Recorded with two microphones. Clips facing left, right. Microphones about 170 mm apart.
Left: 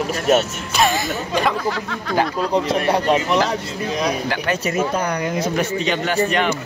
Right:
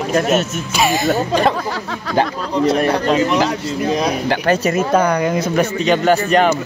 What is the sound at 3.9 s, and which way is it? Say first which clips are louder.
Speech: even; 35° right (ahead or behind).